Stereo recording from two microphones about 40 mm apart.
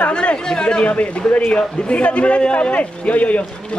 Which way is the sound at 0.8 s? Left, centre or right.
Left.